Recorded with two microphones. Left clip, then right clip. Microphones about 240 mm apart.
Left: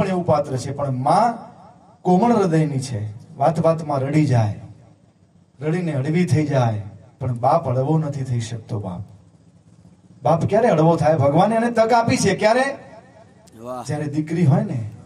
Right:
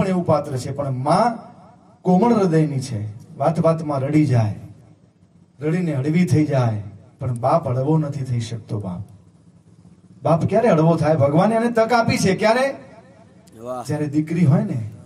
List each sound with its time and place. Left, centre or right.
0.0 s a man's voice: left
5.6 s a man's voice: left
10.2 s a man's voice: left
13.6 s a man's voice: centre
13.8 s a man's voice: left